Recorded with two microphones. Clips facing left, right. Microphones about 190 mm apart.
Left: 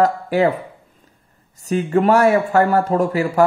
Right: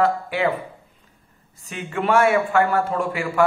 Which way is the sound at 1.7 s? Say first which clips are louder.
Left 7 dB; 40° left (ahead or behind).